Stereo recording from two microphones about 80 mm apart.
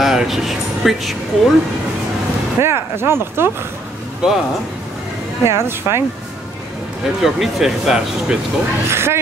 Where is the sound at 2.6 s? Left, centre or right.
Right.